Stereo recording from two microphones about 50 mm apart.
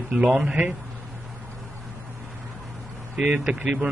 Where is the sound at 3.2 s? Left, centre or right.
Centre.